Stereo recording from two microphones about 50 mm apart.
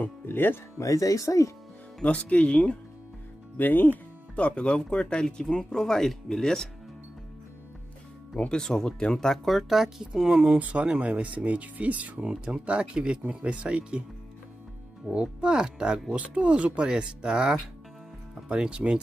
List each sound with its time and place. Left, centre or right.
0.0 s speech: left
0.7 s speech: left
2.0 s speech: centre
3.5 s speech: left
4.4 s speech: left
4.6 s speech: centre
8.4 s speech: centre
9.4 s speech: centre
10.6 s speech: right
15.1 s speech: centre